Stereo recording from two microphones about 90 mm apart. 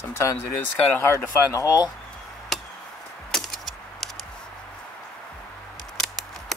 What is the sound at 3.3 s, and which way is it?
Music, 5° left (ahead or behind).